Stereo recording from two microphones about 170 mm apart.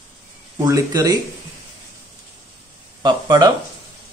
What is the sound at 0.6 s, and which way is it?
Speech, 20° right (ahead or behind).